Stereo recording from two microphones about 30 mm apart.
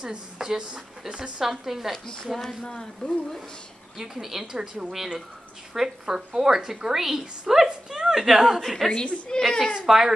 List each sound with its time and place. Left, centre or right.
0.0 s speech: right
1.4 s a woman's voice: centre
2.6 s speech: left
4.0 s a woman's voice: centre
8.6 s a woman's voice: centre
8.9 s a woman's voice: left
9.4 s a woman's voice: centre
9.8 s a woman's voice: centre